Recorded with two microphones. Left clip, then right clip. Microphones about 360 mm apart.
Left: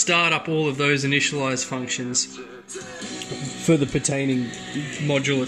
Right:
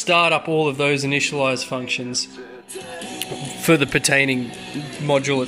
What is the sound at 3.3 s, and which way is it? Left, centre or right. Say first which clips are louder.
Speech: right 4 dB; right.